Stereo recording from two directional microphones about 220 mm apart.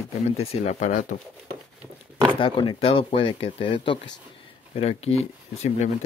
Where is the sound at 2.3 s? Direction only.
20° left (ahead or behind).